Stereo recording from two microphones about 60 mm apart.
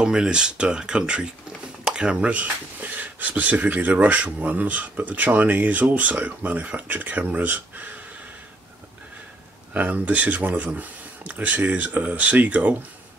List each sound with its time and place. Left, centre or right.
0.0 s speech: centre; by 8.0 s right
9.8 s speech: right